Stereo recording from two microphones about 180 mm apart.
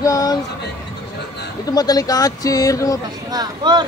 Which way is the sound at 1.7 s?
20° left (ahead or behind).